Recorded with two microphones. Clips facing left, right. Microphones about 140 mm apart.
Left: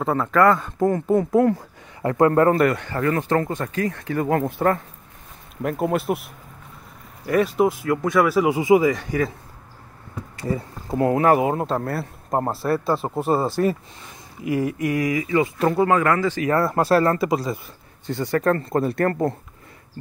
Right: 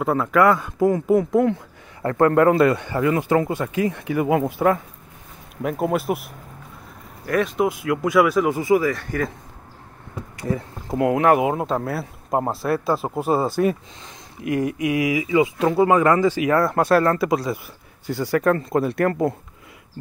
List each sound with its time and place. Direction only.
0.0 s speech: 5° right (ahead or behind)
2.0 s a man's voice: 15° left (ahead or behind)
2.5 s speech: 15° right (ahead or behind); by 8.5 s centre (ahead or behind)
8.5 s speech: 15° left (ahead or behind)
10.4 s speech: 5° left (ahead or behind)
15.8 s speech: 15° right (ahead or behind)
16.4 s speech: centre (ahead or behind)